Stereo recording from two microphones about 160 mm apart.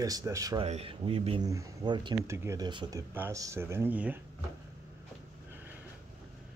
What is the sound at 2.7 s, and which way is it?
Speech, 30° right (ahead or behind).